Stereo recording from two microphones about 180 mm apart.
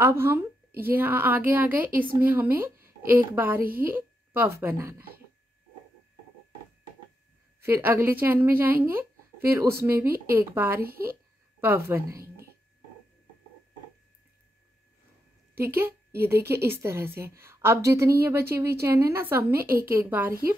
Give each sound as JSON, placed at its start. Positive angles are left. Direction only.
{"t": 0.0, "sound": "speech", "side_deg": -15}
{"t": 7.6, "sound": "speech", "side_deg": -15}
{"t": 10.8, "sound": "speech", "side_deg": -55}
{"t": 11.6, "sound": "a woman's voice", "side_deg": -15}
{"t": 15.5, "sound": "a woman's voice", "side_deg": -10}